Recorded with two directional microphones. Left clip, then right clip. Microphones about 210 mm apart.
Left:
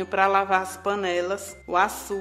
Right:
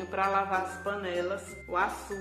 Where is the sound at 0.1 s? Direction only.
40° left (ahead or behind).